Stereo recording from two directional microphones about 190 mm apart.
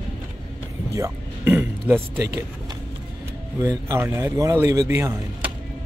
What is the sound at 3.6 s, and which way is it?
A man's voice, 15° right (ahead or behind).